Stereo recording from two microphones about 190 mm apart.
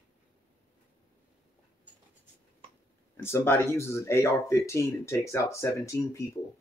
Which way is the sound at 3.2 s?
15° left (ahead or behind).